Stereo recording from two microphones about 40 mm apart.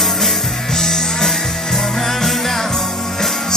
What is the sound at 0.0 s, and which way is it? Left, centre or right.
Music, centre.